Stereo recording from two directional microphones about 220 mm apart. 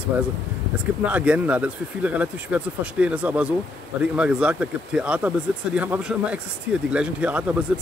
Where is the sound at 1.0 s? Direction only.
5° right (ahead or behind).